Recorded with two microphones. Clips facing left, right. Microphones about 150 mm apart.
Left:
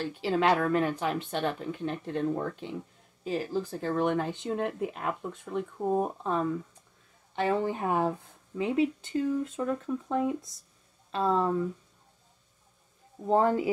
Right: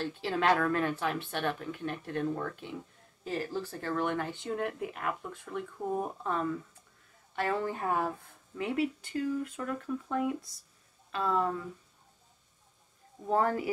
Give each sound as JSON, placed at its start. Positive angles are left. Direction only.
{"t": 0.0, "sound": "speech", "side_deg": 15}
{"t": 13.3, "sound": "speech", "side_deg": 20}